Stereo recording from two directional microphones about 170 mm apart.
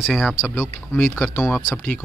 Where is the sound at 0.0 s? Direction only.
Centre (ahead or behind).